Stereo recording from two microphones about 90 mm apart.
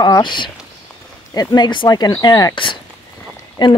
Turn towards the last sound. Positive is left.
turn(degrees=55)  # may be behind; listen again after turning